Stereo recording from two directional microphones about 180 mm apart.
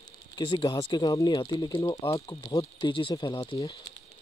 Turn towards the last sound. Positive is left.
turn(degrees=25)  # may be behind; listen again after turning